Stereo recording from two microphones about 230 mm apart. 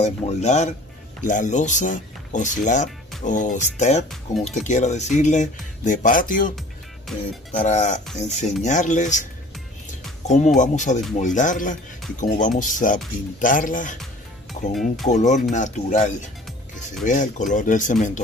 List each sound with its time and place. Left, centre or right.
0.0 s speech: left
7.1 s speech: centre
7.5 s speech: left
14.7 s speech: centre
15.0 s speech: left